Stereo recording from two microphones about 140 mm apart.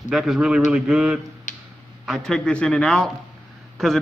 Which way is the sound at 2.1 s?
5° left (ahead or behind).